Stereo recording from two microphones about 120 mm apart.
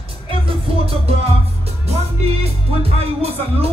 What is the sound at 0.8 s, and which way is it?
Music, 55° right (ahead or behind).